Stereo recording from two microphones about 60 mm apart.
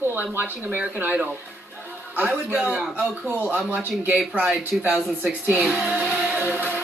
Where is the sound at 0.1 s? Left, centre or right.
Right.